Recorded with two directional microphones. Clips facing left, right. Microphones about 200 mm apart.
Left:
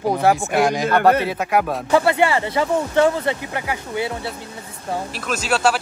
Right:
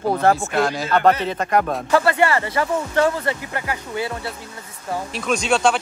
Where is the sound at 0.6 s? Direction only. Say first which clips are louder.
Left 2 dB; 15° left (ahead or behind).